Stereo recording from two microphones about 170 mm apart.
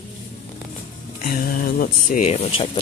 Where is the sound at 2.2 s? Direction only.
40° left (ahead or behind).